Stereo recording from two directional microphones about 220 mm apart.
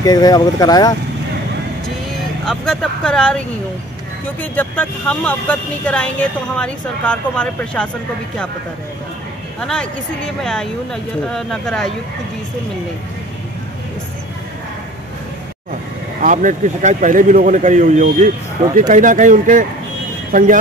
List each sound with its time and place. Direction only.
0.0 s speech: 15° left (ahead or behind)
2.4 s speech: 5° left (ahead or behind)
9.6 s speech: 5° left (ahead or behind)
16.2 s a man's voice: 35° right (ahead or behind)